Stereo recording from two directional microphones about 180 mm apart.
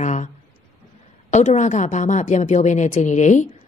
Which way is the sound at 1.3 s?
40° left (ahead or behind).